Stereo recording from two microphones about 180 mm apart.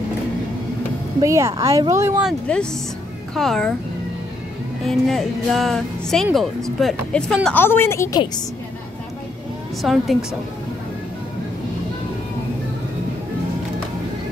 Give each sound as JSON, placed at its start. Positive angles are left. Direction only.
{"t": 1.2, "sound": "speech", "side_deg": -15}
{"t": 2.2, "sound": "speech", "side_deg": 5}
{"t": 4.8, "sound": "speech", "side_deg": 0}
{"t": 9.8, "sound": "speech", "side_deg": 0}